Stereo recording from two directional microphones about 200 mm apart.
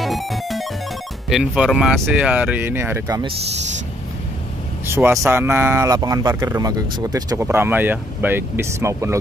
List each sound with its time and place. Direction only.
0.0 s music: centre (ahead or behind)
1.3 s speech: 5° right (ahead or behind)
3.2 s speech: 25° right (ahead or behind)
4.8 s speech: 10° right (ahead or behind)